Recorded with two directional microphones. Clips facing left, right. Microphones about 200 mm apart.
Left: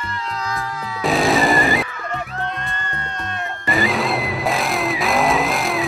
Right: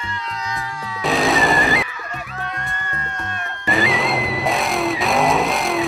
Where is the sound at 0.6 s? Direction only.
Centre (ahead or behind).